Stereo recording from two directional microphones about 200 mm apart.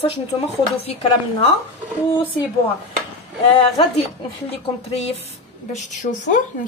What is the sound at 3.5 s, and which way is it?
A woman's voice, 25° left (ahead or behind).